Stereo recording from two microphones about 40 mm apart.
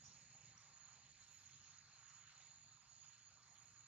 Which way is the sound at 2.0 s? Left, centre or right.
Right.